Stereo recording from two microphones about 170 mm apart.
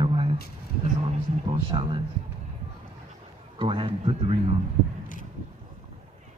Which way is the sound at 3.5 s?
30° right (ahead or behind).